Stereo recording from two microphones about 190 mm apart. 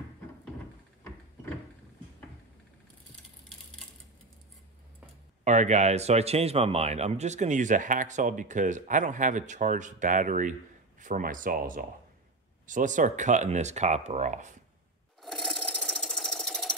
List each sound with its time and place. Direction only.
5.4 s speech: 40° right (ahead or behind)
15.2 s sewing machine: centre (ahead or behind)